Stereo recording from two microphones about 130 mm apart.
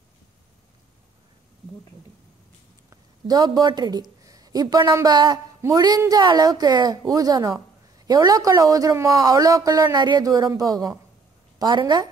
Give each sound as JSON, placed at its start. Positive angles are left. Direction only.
{"t": 2.9, "sound": "a woman's voice", "side_deg": -30}